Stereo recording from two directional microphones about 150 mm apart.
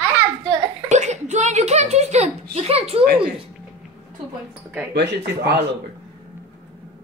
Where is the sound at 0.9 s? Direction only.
50° right (ahead or behind).